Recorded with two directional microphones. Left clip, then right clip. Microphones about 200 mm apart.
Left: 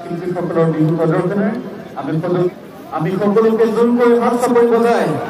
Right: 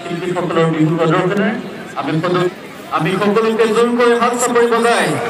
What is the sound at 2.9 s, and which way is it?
A man's voice, 45° left (ahead or behind).